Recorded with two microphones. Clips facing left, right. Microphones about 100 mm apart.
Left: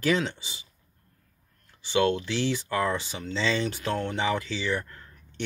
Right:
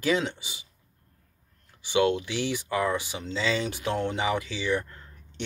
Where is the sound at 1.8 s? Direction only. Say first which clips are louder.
Even; 15° right (ahead or behind).